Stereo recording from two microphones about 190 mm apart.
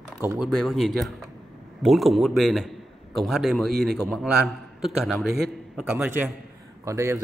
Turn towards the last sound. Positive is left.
turn(degrees=-15)  # may be behind; listen again after turning